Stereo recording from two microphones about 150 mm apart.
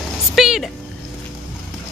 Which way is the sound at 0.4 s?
Centre (ahead or behind).